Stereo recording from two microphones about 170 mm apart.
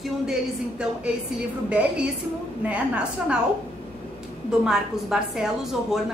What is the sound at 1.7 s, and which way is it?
A woman's voice, 5° right (ahead or behind).